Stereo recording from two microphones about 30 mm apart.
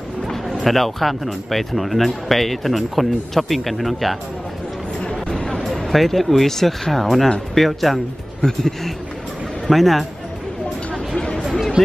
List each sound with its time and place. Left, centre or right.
0.6 s speech: centre
5.5 s speech: centre
8.4 s speech: left
9.7 s speech: centre
11.1 s chatter: left